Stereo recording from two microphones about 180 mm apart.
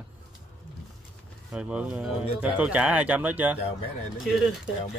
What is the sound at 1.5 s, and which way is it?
Speech, 5° right (ahead or behind).